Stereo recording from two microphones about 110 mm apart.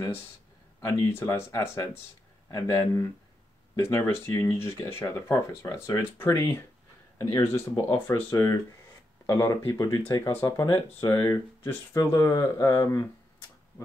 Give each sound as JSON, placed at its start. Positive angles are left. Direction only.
{"t": 0.7, "sound": "speech", "side_deg": 25}